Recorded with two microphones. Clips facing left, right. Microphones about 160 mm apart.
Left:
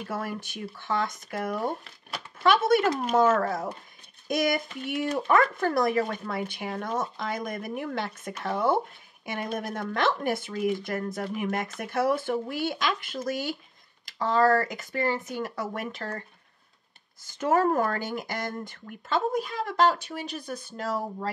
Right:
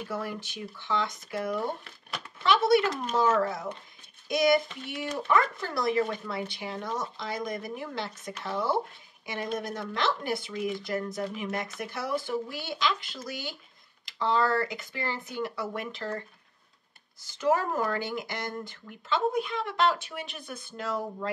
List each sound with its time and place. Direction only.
0.1 s speech: 50° left (ahead or behind)
17.2 s speech: 50° left (ahead or behind)